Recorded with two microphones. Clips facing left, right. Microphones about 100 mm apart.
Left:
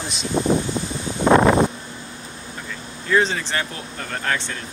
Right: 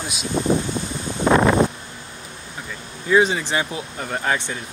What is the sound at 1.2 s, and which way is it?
Wind, 30° left (ahead or behind).